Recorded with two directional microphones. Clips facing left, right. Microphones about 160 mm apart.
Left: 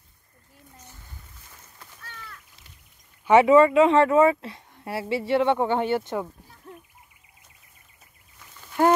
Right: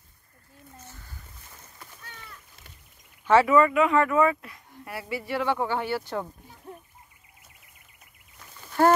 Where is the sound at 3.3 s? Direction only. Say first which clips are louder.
Left 4 dB; 20° left (ahead or behind).